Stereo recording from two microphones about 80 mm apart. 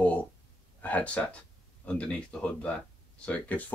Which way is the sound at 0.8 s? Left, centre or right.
Centre.